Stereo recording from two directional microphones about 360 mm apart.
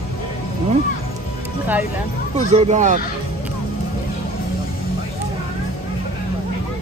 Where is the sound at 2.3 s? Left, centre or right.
Centre.